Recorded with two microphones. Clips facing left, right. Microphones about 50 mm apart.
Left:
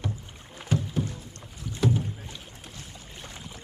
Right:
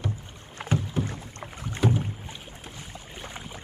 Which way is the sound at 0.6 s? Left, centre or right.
Right.